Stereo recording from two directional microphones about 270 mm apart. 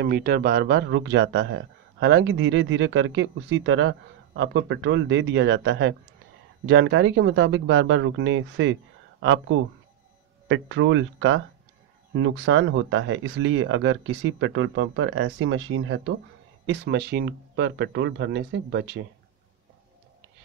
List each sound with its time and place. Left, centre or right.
0.0 s speech: right